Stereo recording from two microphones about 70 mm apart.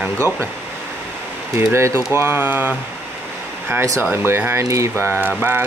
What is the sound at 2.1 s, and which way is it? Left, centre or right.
Speech, right.